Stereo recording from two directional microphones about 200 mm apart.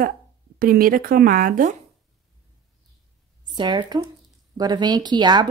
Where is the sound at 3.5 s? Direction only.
20° right (ahead or behind).